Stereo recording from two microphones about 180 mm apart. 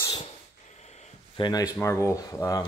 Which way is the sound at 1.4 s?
20° left (ahead or behind).